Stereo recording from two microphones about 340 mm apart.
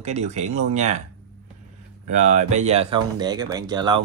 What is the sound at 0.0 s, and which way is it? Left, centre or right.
Speech, centre.